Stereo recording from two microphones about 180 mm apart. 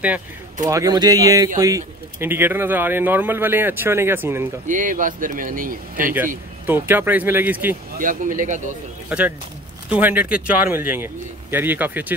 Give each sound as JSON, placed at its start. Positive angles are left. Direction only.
{"t": 0.7, "sound": "speech", "side_deg": -20}
{"t": 4.6, "sound": "speech", "side_deg": -45}
{"t": 6.1, "sound": "speech", "side_deg": -10}
{"t": 8.0, "sound": "speech", "side_deg": -50}
{"t": 9.8, "sound": "speech", "side_deg": -10}